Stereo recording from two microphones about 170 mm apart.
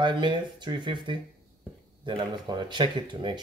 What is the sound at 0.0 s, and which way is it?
Speech, 25° right (ahead or behind).